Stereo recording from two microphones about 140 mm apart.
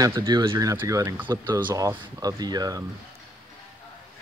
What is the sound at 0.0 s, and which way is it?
Speech, 25° right (ahead or behind).